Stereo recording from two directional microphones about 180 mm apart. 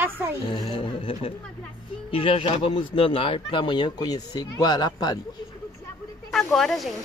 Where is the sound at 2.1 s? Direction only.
30° left (ahead or behind).